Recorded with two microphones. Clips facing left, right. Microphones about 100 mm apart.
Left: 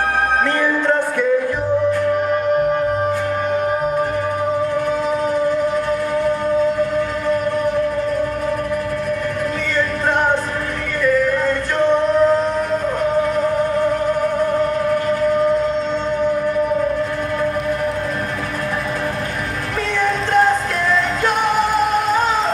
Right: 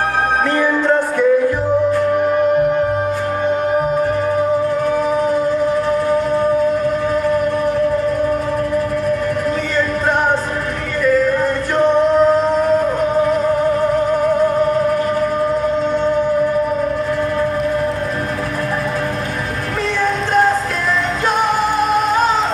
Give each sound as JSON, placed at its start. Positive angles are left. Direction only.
{"t": 0.6, "sound": "music", "side_deg": -15}
{"t": 11.4, "sound": "music", "side_deg": -15}